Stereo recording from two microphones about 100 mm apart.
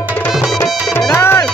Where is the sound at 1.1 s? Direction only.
25° left (ahead or behind).